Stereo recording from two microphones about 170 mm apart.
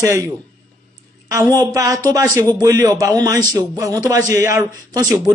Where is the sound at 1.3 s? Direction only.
20° right (ahead or behind).